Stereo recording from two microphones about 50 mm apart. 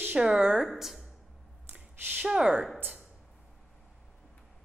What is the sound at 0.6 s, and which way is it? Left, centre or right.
Speech, centre.